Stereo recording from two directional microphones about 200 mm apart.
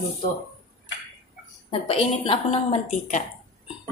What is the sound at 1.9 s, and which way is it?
Speech, 30° left (ahead or behind).